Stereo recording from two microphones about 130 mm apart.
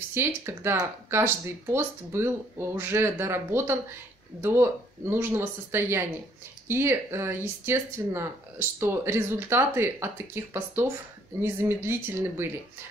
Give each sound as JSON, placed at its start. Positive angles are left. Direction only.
{"t": 0.1, "sound": "speech", "side_deg": -20}